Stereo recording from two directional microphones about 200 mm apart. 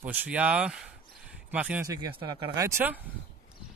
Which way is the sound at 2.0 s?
15° right (ahead or behind).